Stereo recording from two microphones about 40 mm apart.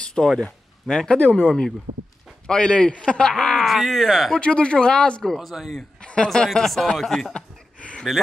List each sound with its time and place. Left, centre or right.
0.0 s a sound: centre
0.3 s speech: centre
1.1 s a man's voice: left
3.3 s a sound: centre
3.6 s speech: centre
4.3 s a man's voice: left
5.4 s speech: centre
6.2 s speech: centre
7.3 s a sound: left